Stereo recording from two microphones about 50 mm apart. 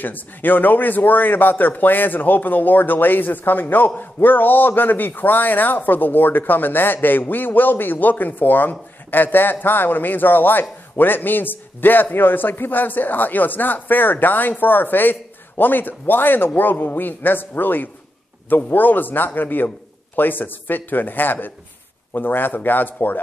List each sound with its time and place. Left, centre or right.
0.0 s a man's voice: left